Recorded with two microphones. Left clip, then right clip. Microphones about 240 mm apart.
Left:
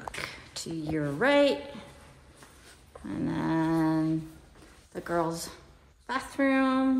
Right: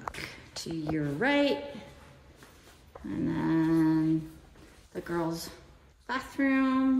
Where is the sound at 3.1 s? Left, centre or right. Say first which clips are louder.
Even; centre.